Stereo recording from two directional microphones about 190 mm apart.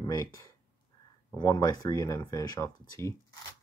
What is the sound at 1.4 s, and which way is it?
Speech, 20° left (ahead or behind).